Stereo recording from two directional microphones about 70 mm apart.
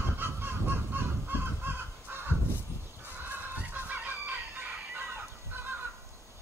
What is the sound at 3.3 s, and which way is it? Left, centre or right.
Chicken, right.